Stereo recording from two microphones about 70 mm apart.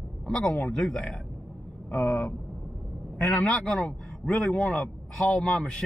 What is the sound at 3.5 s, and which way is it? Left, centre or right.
A man's voice, centre.